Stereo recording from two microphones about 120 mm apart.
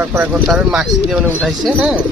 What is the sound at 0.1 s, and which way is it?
Speech, 15° right (ahead or behind).